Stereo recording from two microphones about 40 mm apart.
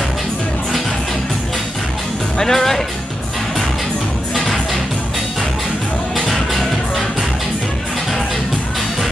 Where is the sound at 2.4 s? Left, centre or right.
Centre.